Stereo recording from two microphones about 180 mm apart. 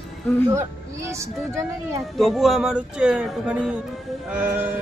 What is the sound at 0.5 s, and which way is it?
Speech, 15° right (ahead or behind).